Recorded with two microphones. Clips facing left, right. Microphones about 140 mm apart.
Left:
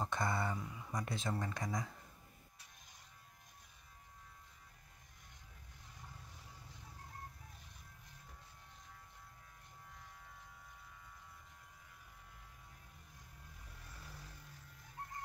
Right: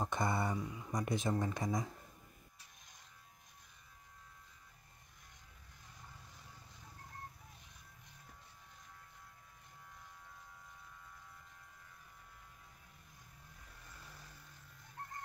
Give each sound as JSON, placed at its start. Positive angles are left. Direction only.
{"t": 0.0, "sound": "speech", "side_deg": -20}